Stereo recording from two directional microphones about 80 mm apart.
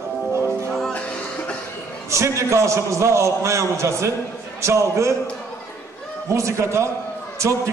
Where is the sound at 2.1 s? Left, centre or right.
Right.